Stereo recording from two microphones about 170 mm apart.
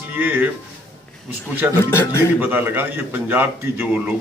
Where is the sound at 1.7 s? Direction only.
15° left (ahead or behind).